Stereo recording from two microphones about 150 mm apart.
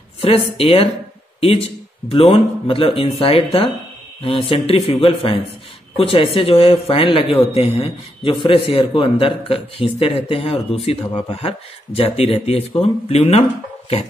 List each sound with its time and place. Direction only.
0.2 s speech: 40° left (ahead or behind)
2.0 s speech: 40° left (ahead or behind)